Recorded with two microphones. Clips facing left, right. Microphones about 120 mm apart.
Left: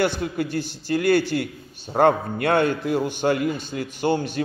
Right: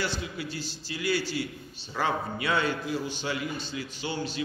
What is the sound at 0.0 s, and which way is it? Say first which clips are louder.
A man's voice: left 10 dB; 55° left (ahead or behind).